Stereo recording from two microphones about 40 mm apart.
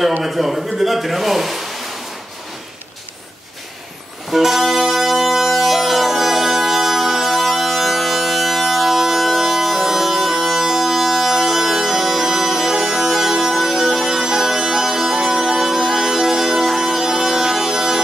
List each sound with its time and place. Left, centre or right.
0.2 s speech: centre
4.3 s music: centre